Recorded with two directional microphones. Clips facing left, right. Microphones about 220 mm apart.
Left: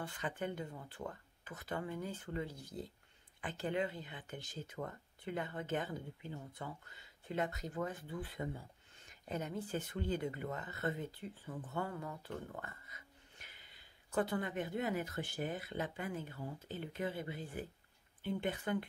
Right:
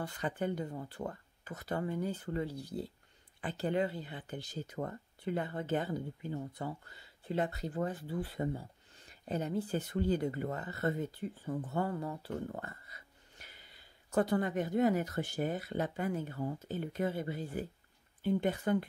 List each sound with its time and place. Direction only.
0.0 s speech: 35° right (ahead or behind)